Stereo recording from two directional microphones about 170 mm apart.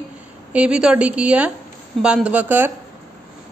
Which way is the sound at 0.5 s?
5° right (ahead or behind).